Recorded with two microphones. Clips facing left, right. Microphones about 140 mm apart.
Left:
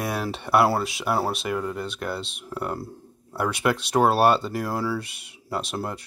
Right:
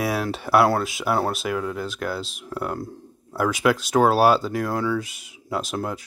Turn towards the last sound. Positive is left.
turn(degrees=0)  # may be behind; listen again after turning